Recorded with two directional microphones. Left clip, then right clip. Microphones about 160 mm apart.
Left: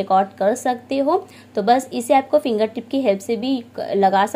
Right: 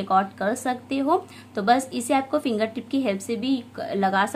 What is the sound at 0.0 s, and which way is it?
A woman's voice, 25° left (ahead or behind).